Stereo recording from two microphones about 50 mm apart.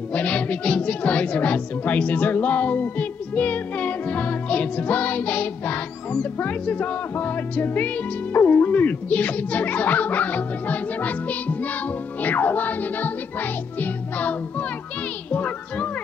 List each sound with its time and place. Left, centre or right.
0.1 s a child's voice: left